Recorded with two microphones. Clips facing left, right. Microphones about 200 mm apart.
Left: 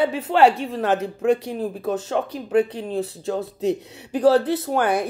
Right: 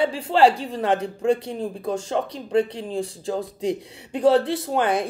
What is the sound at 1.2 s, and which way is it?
Speech, 30° right (ahead or behind).